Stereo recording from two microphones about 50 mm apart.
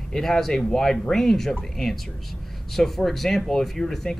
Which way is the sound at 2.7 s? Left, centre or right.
Centre.